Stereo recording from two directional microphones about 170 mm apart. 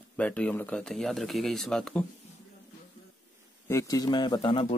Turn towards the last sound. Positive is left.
turn(degrees=30)  # may be behind; listen again after turning